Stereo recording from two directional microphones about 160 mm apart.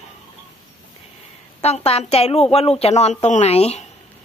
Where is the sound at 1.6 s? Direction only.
40° left (ahead or behind).